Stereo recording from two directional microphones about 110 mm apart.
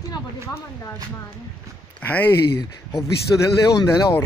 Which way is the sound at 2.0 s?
15° left (ahead or behind).